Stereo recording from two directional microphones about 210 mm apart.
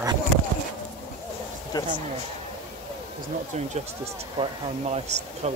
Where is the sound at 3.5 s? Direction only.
30° right (ahead or behind).